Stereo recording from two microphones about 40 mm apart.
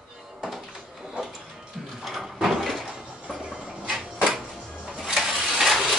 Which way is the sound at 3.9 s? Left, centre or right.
Right.